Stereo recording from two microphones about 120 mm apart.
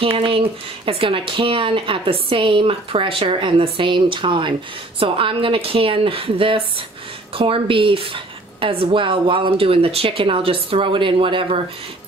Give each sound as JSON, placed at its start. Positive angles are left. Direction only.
{"t": 0.0, "sound": "speech", "side_deg": -45}